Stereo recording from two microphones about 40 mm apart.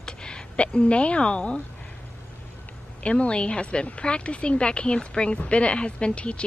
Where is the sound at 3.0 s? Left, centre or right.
Left.